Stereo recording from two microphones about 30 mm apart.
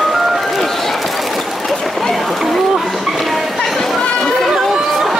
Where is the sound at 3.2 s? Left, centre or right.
Centre.